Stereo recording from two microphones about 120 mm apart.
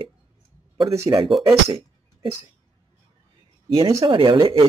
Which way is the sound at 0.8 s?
60° right (ahead or behind).